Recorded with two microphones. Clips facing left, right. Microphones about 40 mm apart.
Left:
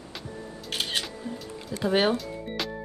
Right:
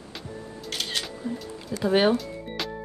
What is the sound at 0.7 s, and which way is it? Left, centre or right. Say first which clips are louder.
Music: left 1 dB; left.